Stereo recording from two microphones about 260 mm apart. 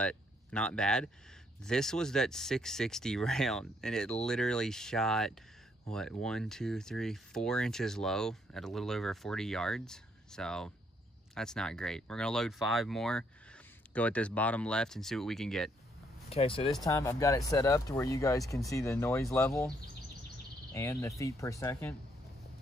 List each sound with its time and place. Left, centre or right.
0.0 s speech: centre
16.3 s speech: left
20.7 s speech: centre